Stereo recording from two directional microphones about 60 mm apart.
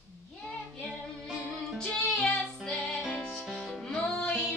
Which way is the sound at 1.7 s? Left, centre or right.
Centre.